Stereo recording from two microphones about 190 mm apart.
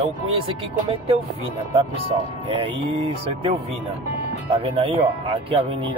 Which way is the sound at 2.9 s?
30° right (ahead or behind).